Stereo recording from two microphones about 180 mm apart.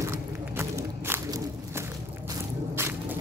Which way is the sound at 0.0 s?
15° right (ahead or behind).